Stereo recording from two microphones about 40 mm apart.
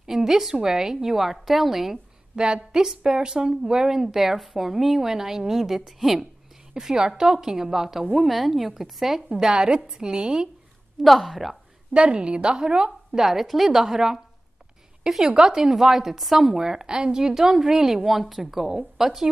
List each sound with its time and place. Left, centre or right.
0.0 s a sound: centre
0.6 s a woman's voice: centre
2.3 s a woman's voice: right; by 9.2 s centre
9.4 s a woman's voice: centre
11.1 s a woman's voice: centre
11.9 s a woman's voice: right
13.2 s a woman's voice: centre